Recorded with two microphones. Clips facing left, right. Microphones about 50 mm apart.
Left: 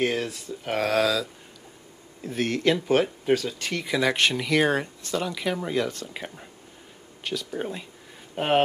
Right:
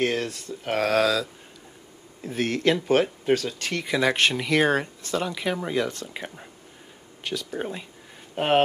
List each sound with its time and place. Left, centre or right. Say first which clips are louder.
0.0 s speech: right 1 dB; centre